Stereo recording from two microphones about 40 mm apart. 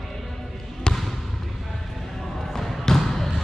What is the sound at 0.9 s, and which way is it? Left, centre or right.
Basketball bounce, left.